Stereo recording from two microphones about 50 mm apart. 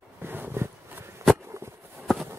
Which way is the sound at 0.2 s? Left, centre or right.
Right.